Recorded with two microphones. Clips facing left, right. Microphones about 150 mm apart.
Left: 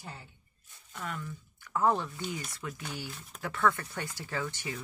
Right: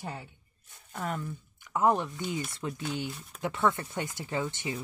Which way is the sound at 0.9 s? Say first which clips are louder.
Right 5 dB; 40° right (ahead or behind).